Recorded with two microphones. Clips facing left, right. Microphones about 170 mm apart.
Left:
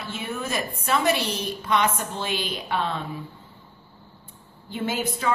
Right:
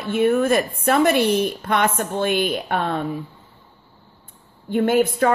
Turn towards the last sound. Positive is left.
turn(degrees=-55)  # may be behind; listen again after turning